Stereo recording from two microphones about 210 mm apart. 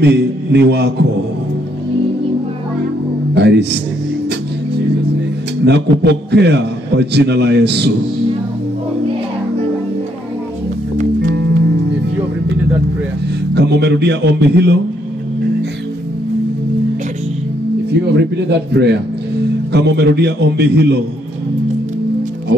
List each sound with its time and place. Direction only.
0.0 s a man's voice: 55° right (ahead or behind)
3.3 s a man's voice: 55° right (ahead or behind)
5.7 s a man's voice: 55° right (ahead or behind)
13.6 s a man's voice: 55° right (ahead or behind)
18.1 s a man's voice: 55° right (ahead or behind)
22.5 s a man's voice: 55° right (ahead or behind)